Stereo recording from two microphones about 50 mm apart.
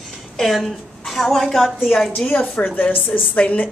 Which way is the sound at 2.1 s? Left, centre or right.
Left.